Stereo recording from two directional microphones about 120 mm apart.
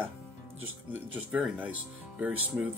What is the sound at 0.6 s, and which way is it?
Speech, 10° right (ahead or behind).